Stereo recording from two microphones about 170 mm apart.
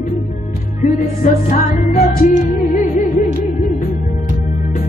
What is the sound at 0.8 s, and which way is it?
Music, 45° left (ahead or behind).